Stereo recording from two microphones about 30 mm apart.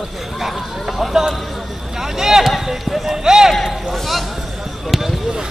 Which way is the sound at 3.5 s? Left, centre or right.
Centre.